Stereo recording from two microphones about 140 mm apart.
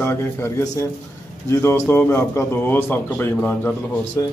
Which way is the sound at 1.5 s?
20° left (ahead or behind).